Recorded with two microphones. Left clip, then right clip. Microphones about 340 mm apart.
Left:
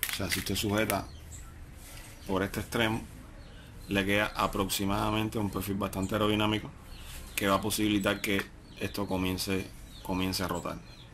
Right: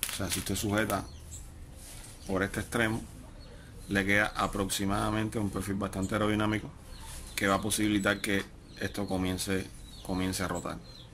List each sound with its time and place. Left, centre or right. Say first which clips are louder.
0.2 s speech: left 2 dB; centre
2.3 s speech: even; centre
3.9 s speech: right 1 dB; centre